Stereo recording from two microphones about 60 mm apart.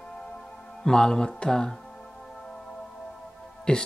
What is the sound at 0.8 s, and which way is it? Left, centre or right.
Speech, centre.